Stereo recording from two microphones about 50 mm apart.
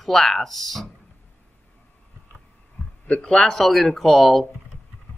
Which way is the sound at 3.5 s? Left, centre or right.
Centre.